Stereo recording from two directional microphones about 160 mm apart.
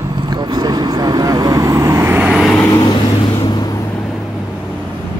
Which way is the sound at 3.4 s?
25° left (ahead or behind).